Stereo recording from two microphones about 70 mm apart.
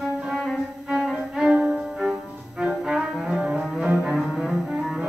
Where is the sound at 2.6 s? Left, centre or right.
Centre.